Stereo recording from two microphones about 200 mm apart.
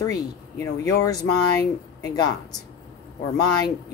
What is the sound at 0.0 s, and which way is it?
Speech, 15° left (ahead or behind).